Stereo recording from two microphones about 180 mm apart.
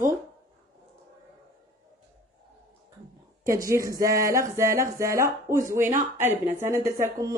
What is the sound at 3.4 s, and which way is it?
Speech, 15° right (ahead or behind).